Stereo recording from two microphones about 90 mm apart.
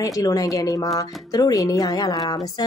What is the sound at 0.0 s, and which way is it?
Speech, 40° left (ahead or behind).